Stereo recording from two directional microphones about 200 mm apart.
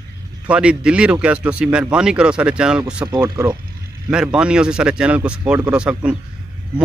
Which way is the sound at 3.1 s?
20° right (ahead or behind).